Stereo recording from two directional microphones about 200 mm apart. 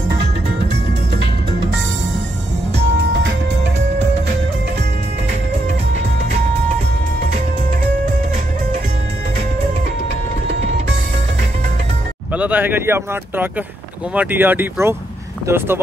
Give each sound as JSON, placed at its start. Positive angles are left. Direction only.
{"t": 3.1, "sound": "music", "side_deg": -65}
{"t": 12.3, "sound": "speech", "side_deg": -10}